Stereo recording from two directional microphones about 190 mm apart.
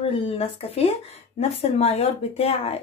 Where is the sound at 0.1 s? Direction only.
30° left (ahead or behind).